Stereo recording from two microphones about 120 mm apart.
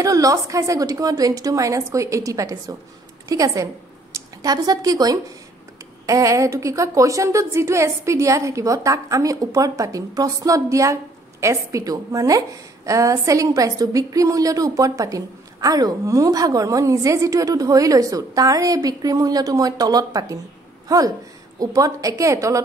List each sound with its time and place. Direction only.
0.0 s a woman's voice: 30° right (ahead or behind)